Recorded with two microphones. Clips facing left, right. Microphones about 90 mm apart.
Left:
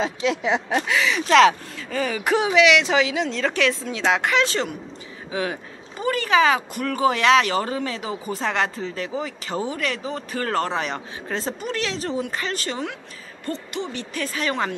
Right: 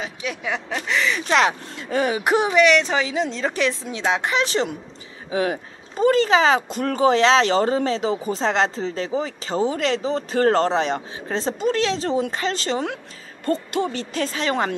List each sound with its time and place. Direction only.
0.0 s speech: 20° left (ahead or behind)
0.8 s a woman's voice: 5° left (ahead or behind)
2.0 s speech: 15° right (ahead or behind)
2.4 s a woman's voice: centre (ahead or behind)
4.5 s speech: 20° right (ahead or behind)
5.3 s speech: 35° right (ahead or behind)
13.5 s hoot: 45° right (ahead or behind)
14.1 s speech: 30° right (ahead or behind)